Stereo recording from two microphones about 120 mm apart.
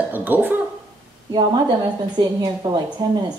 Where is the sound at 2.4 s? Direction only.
40° right (ahead or behind).